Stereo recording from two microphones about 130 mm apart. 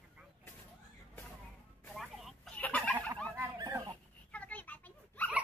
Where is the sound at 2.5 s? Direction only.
10° left (ahead or behind).